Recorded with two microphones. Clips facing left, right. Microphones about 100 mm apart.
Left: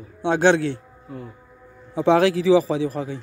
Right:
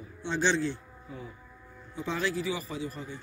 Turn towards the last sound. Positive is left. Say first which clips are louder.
# left 12 dB
turn(degrees=85)